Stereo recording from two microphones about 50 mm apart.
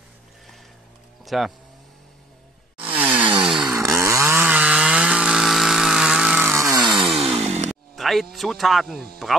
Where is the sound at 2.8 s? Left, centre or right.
Right.